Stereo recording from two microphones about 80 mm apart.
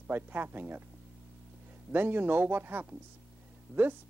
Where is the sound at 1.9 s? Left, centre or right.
Right.